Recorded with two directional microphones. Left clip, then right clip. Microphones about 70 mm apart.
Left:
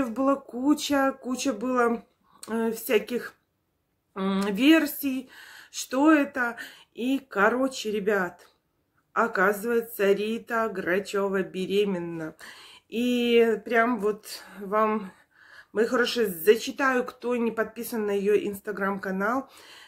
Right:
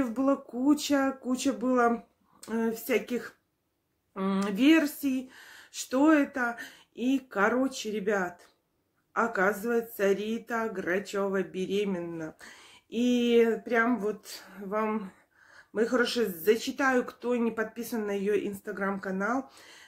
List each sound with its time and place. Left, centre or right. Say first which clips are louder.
0.0 s speech: left 3 dB; left
15.5 s speech: left 3 dB; left